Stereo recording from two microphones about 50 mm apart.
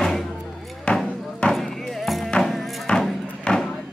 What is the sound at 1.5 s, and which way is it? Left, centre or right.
Music, centre.